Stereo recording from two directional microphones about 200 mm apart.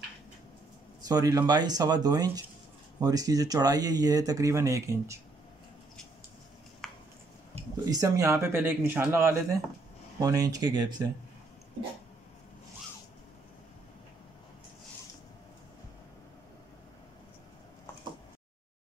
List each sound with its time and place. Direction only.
1.0 s speech: 20° right (ahead or behind)
6.8 s a sound: centre (ahead or behind)
7.9 s speech: 15° right (ahead or behind)